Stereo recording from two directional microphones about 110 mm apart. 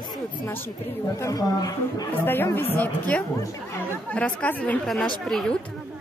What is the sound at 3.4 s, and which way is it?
Speech, 30° left (ahead or behind).